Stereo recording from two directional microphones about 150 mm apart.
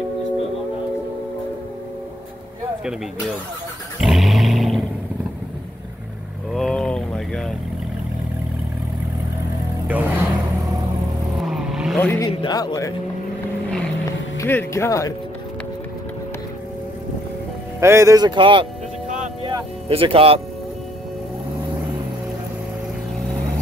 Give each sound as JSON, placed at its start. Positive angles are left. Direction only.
{"t": 4.0, "sound": "a sound", "side_deg": 0}
{"t": 6.5, "sound": "boat", "side_deg": 0}
{"t": 9.8, "sound": "vehicle", "side_deg": -10}
{"t": 11.4, "sound": "vehicle", "side_deg": -5}
{"t": 12.0, "sound": "vehicle", "side_deg": 15}
{"t": 12.3, "sound": "speech", "side_deg": 30}
{"t": 14.4, "sound": "speech", "side_deg": 15}
{"t": 17.7, "sound": "speech", "side_deg": -20}